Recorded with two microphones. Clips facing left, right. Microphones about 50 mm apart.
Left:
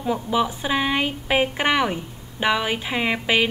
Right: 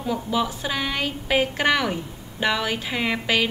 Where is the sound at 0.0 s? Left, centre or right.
Left.